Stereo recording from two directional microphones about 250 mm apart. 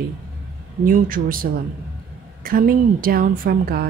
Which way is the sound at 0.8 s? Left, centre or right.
Right.